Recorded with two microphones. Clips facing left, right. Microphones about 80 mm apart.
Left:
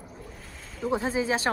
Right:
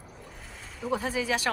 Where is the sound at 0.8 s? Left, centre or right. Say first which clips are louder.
Left 2 dB; left.